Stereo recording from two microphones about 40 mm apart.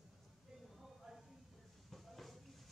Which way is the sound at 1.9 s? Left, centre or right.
Centre.